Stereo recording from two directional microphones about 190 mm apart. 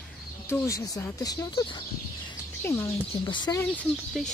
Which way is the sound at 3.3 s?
25° left (ahead or behind).